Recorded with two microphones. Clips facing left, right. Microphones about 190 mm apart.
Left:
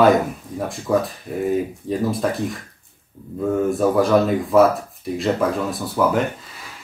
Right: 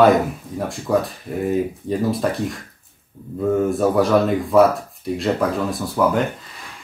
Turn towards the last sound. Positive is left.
turn(degrees=0)  # may be behind; listen again after turning